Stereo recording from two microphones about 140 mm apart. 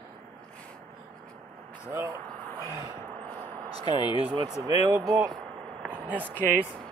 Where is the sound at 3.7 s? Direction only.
30° left (ahead or behind).